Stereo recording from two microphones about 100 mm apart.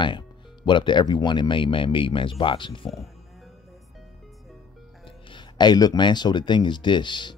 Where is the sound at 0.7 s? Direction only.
50° left (ahead or behind).